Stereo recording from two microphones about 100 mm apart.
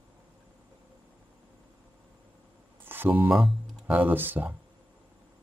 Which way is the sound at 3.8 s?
15° right (ahead or behind).